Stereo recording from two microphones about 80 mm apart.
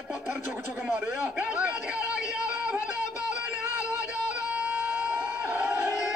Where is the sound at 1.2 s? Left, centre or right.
Centre.